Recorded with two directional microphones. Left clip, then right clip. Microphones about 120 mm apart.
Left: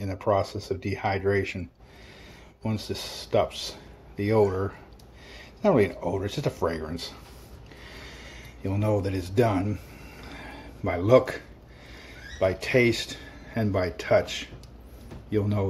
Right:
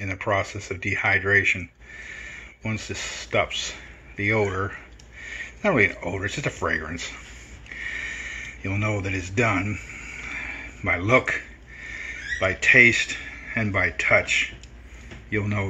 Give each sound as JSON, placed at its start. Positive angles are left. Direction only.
{"t": 0.0, "sound": "speech", "side_deg": 30}
{"t": 7.9, "sound": "a sound", "side_deg": 25}
{"t": 10.8, "sound": "speech", "side_deg": 25}